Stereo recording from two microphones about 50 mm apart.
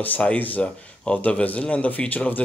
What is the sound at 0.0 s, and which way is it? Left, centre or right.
Speech, left.